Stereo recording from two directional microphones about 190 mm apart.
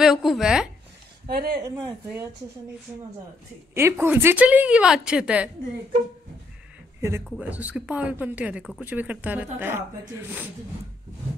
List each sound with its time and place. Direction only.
0.0 s speech: centre (ahead or behind)
1.6 s a woman's voice: 15° right (ahead or behind)
3.7 s a woman's voice: 10° right (ahead or behind)
7.0 s a man's voice: 15° right (ahead or behind)